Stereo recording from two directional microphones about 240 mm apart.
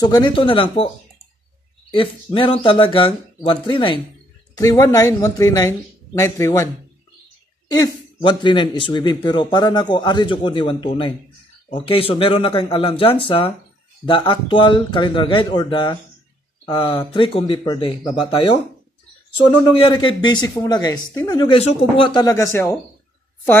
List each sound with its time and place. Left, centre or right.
0.0 s speech: centre
1.9 s speech: left